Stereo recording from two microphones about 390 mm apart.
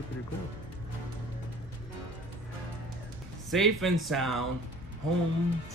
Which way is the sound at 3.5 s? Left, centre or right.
Centre.